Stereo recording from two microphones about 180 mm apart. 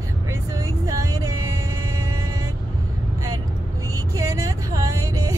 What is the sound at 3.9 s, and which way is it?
Music, 15° right (ahead or behind).